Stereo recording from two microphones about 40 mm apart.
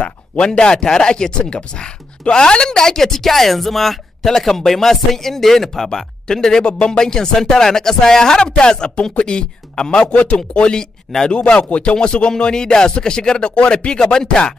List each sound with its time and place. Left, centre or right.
0.5 s speech: centre
2.8 s speech: centre
13.4 s speech: left